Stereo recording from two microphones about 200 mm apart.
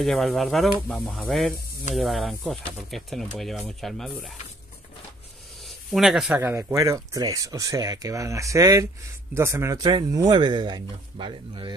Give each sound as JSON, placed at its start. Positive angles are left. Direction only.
{"t": 0.0, "sound": "speech", "side_deg": 0}
{"t": 5.6, "sound": "speech", "side_deg": 0}